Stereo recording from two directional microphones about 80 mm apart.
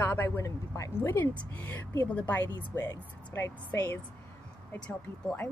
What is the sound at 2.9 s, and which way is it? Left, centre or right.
Speech, left.